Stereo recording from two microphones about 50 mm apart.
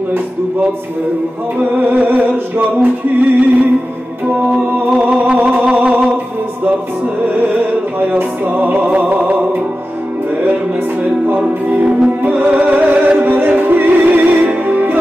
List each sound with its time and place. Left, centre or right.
1.6 s music: right
5.1 s music: right
7.3 s music: right
11.3 s music: right